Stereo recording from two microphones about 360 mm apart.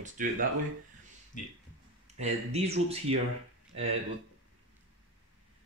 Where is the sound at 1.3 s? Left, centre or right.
Left.